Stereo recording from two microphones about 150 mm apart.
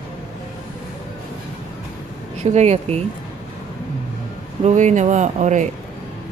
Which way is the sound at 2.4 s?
45° right (ahead or behind).